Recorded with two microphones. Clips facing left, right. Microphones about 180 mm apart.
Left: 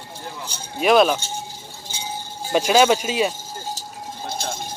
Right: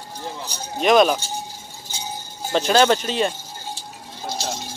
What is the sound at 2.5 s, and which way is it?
Speech, 10° left (ahead or behind).